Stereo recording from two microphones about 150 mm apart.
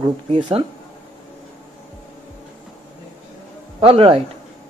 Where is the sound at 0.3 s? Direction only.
35° right (ahead or behind).